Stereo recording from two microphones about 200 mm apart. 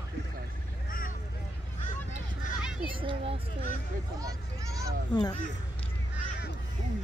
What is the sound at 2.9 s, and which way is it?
A child's voice, 25° right (ahead or behind).